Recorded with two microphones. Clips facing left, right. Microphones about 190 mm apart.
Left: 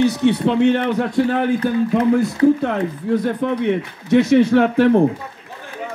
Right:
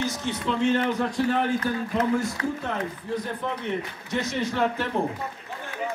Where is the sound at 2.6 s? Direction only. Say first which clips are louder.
Left 10 dB; 65° left (ahead or behind).